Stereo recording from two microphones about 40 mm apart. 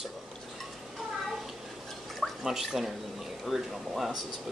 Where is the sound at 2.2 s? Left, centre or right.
Centre.